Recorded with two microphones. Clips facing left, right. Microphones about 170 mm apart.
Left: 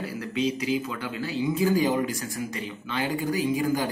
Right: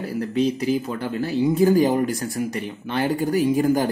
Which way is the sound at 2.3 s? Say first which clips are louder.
Right 6 dB; 55° right (ahead or behind).